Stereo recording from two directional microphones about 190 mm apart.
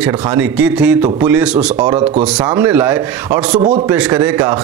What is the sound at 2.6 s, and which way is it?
Speech, 10° right (ahead or behind).